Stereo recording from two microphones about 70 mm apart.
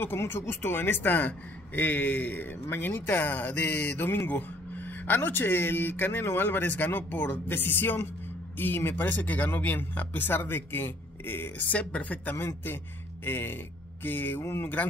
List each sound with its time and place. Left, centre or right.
0.0 s a man's voice: left
12.4 s a man's voice: left